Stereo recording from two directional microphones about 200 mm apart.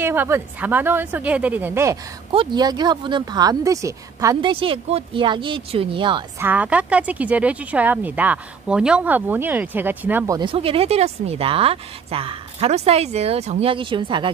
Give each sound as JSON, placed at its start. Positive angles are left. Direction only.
{"t": 0.0, "sound": "speech", "side_deg": -10}
{"t": 6.4, "sound": "speech", "side_deg": -5}
{"t": 10.5, "sound": "speech", "side_deg": -30}